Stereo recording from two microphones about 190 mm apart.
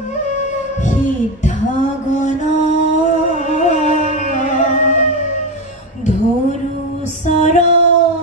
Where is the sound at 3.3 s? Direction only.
40° left (ahead or behind).